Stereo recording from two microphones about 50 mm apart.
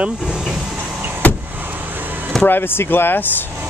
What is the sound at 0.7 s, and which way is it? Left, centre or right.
Vehicle, right.